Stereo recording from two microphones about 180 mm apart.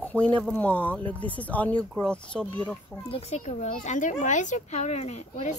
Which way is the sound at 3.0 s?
35° left (ahead or behind).